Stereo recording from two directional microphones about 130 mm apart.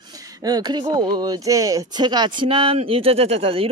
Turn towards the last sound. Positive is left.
turn(degrees=-45)  # may be behind; listen again after turning